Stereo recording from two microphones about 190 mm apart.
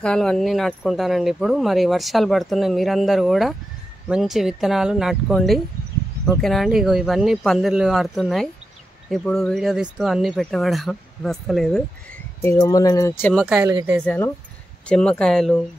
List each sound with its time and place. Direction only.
0.0 s speech: 5° left (ahead or behind)
12.4 s speech: 15° left (ahead or behind)
13.3 s speech: 5° left (ahead or behind)